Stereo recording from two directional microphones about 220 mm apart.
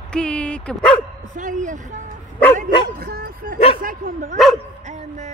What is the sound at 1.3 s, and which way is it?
Speech, 35° right (ahead or behind).